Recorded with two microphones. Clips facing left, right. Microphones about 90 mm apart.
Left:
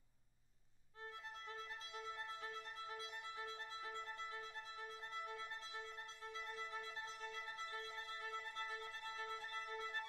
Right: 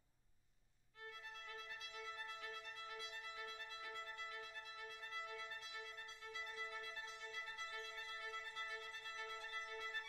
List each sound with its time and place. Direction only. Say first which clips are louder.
1.0 s music: left 3 dB; 30° left (ahead or behind)